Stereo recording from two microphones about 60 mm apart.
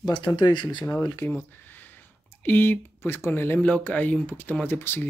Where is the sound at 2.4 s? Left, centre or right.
Left.